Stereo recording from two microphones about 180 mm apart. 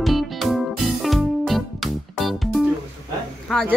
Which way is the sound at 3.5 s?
Centre (ahead or behind).